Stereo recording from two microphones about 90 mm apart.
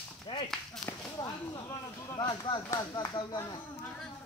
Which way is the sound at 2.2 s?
60° left (ahead or behind).